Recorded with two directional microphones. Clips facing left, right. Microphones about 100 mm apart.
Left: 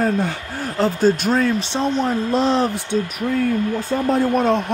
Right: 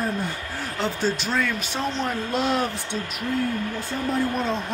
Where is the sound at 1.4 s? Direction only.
30° left (ahead or behind).